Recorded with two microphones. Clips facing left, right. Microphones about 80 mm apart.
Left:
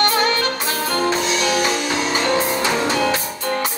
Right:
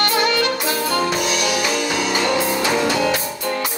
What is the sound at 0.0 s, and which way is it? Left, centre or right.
Music, left.